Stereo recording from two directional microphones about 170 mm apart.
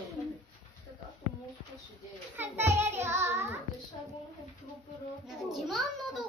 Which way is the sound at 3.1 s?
15° right (ahead or behind).